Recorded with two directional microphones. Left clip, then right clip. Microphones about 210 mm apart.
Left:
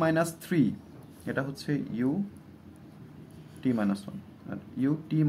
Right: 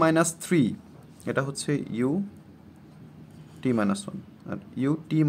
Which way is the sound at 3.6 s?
50° right (ahead or behind).